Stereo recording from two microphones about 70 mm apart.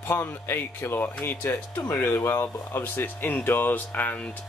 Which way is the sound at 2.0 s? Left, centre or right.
Left.